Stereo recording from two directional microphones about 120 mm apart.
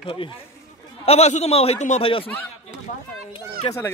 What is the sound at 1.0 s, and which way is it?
A man's voice, 60° left (ahead or behind).